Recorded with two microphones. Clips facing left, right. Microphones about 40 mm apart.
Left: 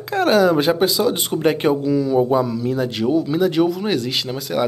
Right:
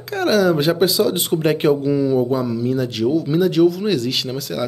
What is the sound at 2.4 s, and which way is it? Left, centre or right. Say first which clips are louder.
Speech: right 1 dB; centre.